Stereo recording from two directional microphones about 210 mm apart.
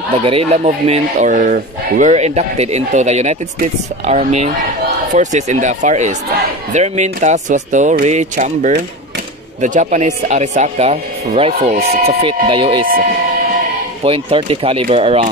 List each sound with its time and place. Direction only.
0.1 s speech: 25° right (ahead or behind)
14.0 s speech: 25° right (ahead or behind)